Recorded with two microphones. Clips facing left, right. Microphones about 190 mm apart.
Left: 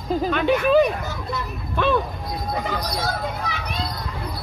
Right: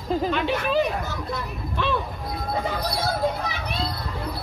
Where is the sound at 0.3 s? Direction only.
55° left (ahead or behind).